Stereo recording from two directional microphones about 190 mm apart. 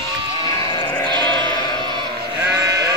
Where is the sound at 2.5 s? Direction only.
15° right (ahead or behind).